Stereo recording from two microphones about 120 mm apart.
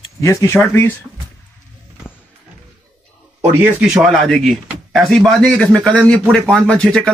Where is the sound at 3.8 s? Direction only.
Centre (ahead or behind).